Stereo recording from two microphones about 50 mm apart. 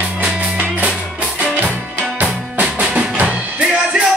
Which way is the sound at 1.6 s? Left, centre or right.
Right.